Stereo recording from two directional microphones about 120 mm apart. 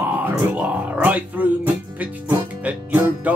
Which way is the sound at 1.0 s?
15° right (ahead or behind).